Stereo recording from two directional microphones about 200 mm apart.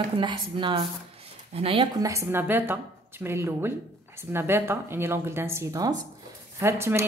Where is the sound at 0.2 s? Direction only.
25° right (ahead or behind).